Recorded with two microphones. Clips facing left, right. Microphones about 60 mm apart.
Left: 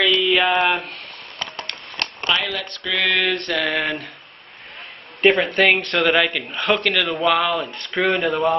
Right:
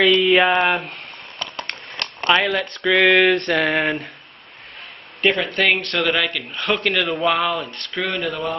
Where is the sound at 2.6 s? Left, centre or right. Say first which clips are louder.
Right 7 dB; centre.